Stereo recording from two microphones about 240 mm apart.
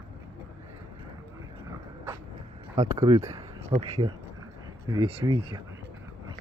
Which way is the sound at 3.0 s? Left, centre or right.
Centre.